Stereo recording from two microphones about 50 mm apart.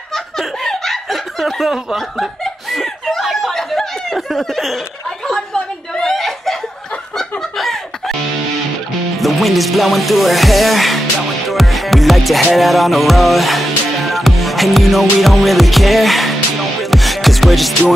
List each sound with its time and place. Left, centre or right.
0.1 s snicker: centre
5.2 s chuckle: centre
7.2 s chicken: centre
9.2 s music: centre